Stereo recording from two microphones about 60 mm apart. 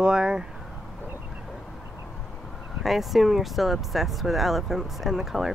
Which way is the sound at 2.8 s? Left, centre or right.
Centre.